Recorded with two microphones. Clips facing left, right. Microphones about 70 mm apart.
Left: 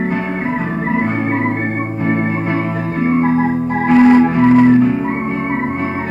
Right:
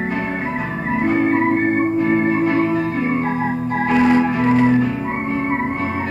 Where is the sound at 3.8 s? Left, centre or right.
Left.